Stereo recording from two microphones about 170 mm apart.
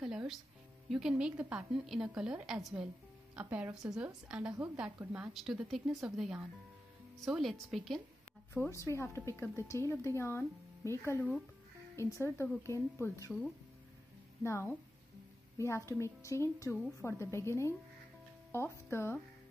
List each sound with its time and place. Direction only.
0.0 s music: 5° right (ahead or behind)
0.8 s a woman's voice: 5° right (ahead or behind)
8.5 s speech: 15° left (ahead or behind)
14.4 s a woman's voice: 15° left (ahead or behind)